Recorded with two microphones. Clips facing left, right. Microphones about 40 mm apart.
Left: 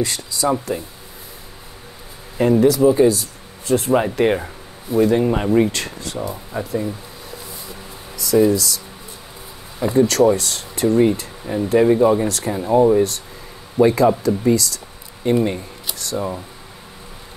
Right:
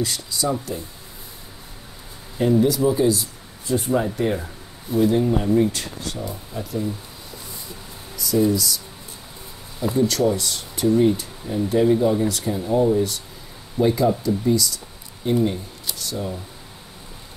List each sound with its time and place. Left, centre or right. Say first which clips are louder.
0.0 s speech: left 4 dB; left
2.3 s speech: left 4 dB; left
3.6 s speech: left 5 dB; left
4.9 s speech: left 3 dB; left
5.5 s speech: left 3 dB; left
6.6 s speech: left 3 dB; left
8.2 s speech: left 4 dB; left
9.9 s speech: left 6 dB; left
12.3 s speech: left 3 dB; left